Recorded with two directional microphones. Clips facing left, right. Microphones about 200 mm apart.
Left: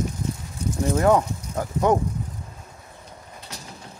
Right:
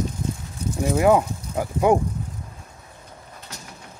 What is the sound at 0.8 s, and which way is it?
Speech, 10° right (ahead or behind).